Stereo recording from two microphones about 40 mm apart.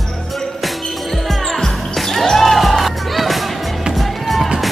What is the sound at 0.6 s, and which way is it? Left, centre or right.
Music, centre.